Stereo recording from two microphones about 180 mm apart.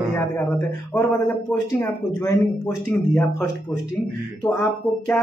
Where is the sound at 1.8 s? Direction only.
15° left (ahead or behind).